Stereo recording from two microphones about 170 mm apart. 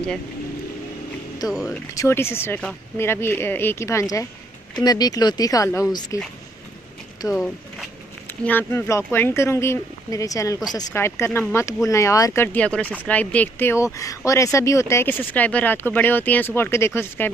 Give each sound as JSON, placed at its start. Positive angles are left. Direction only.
{"t": 2.0, "sound": "speech", "side_deg": 15}
{"t": 7.3, "sound": "speech", "side_deg": 5}